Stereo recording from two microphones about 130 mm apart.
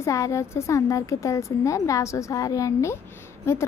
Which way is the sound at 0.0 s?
25° left (ahead or behind).